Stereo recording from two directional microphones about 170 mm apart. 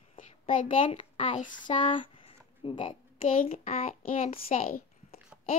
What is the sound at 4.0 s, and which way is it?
Speech, 50° left (ahead or behind).